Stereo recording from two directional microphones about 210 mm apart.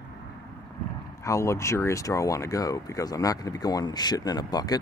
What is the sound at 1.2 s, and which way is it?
Speech, 15° left (ahead or behind).